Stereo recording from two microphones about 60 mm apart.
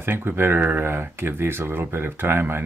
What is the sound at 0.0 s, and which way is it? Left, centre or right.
Speech, right.